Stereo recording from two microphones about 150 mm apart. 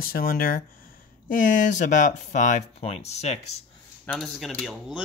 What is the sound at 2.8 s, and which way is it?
Speech, 45° left (ahead or behind).